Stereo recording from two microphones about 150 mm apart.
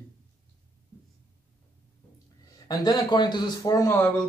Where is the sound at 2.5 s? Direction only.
25° left (ahead or behind).